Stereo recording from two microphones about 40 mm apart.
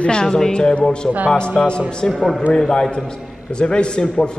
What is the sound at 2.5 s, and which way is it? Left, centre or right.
A man's voice, centre.